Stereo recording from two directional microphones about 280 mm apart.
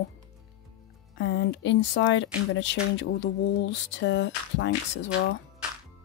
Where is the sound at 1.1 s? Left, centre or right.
Left.